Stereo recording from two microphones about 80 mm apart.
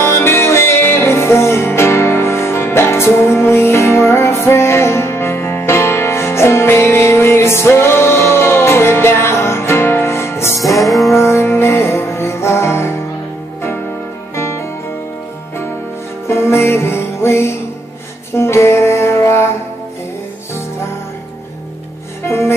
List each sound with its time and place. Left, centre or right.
0.0 s music: left
10.6 s music: centre
11.1 s music: left
14.3 s music: left
16.3 s music: left